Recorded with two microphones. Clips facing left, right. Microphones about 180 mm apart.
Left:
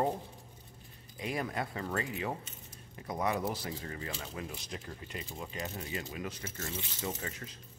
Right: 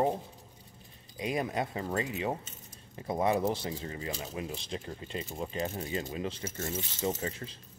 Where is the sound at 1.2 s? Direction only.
20° right (ahead or behind).